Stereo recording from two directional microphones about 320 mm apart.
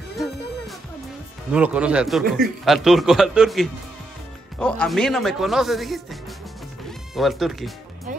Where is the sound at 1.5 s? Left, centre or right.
Centre.